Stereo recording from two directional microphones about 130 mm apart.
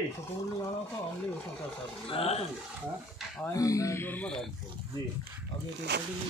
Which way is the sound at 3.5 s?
25° left (ahead or behind).